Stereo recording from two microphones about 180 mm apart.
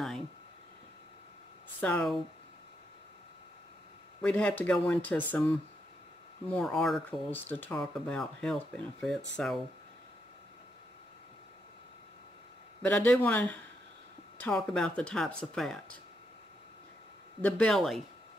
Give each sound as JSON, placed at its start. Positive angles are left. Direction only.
{"t": 1.8, "sound": "speech", "side_deg": 10}
{"t": 4.2, "sound": "speech", "side_deg": 5}
{"t": 12.8, "sound": "speech", "side_deg": 5}
{"t": 17.4, "sound": "speech", "side_deg": 5}